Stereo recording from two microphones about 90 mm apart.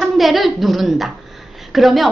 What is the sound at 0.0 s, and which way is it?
A woman's voice, centre (ahead or behind).